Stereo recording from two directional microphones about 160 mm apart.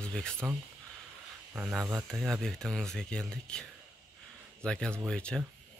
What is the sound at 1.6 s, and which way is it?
Speech, 10° right (ahead or behind).